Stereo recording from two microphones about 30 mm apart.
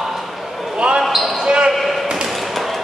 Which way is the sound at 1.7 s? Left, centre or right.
Centre.